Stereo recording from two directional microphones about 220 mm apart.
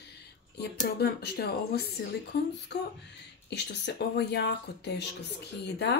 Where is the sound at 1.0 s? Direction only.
45° left (ahead or behind).